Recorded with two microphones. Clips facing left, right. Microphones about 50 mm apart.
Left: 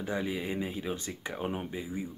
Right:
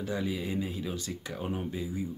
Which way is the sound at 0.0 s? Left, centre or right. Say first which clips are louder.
Even; left.